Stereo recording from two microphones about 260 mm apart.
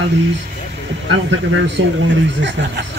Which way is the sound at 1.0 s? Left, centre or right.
Right.